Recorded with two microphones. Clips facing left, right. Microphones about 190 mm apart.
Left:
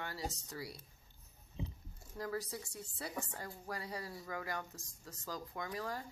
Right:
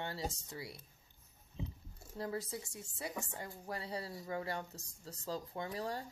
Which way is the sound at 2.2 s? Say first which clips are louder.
Right 1 dB; 25° right (ahead or behind).